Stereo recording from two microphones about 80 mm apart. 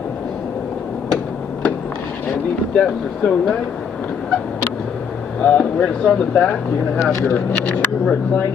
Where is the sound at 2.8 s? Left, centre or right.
Centre.